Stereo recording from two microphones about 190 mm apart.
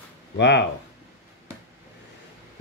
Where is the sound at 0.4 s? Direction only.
65° left (ahead or behind).